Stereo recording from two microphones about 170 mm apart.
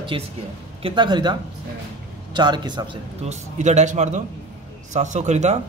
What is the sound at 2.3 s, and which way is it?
A man's voice, 25° right (ahead or behind).